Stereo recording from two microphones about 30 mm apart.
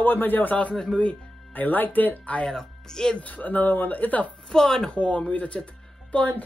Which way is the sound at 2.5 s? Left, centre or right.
Centre.